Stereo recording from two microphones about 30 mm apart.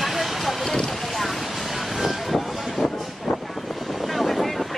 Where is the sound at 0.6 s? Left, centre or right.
Centre.